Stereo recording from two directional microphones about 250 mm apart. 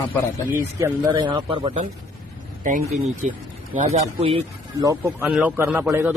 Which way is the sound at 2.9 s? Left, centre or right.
Right.